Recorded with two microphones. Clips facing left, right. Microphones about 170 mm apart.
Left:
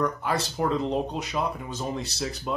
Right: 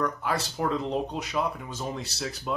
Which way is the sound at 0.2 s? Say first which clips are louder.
Left 2 dB; centre (ahead or behind).